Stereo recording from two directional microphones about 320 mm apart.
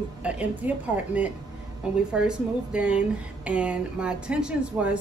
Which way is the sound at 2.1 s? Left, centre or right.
Centre.